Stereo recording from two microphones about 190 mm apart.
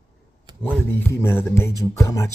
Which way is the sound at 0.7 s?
10° left (ahead or behind).